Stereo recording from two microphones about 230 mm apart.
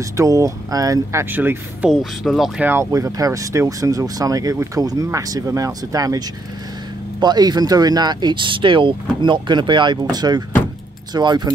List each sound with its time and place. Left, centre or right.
0.2 s speech: centre